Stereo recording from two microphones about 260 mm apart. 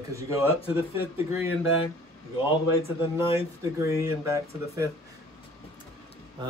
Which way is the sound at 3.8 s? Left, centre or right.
Centre.